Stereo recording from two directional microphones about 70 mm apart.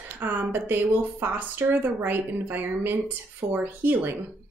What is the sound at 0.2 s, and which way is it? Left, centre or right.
A woman's voice, right.